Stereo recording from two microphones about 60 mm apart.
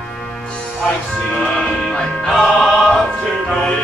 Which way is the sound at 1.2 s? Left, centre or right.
Centre.